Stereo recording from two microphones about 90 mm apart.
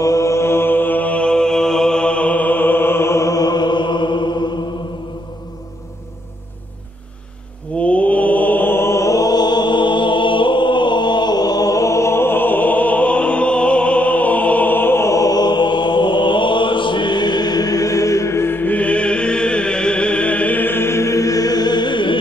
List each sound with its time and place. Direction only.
0.0 s mantra: 35° left (ahead or behind); by 4.5 s 55° left (ahead or behind)
7.8 s mantra: 15° left (ahead or behind); by 22.2 s 65° left (ahead or behind)